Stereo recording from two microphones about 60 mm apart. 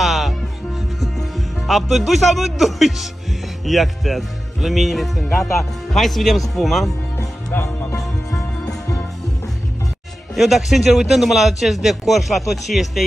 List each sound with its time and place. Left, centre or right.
0.0 s music: centre
3.6 s speech: centre
7.5 s speech: left
10.3 s speech: centre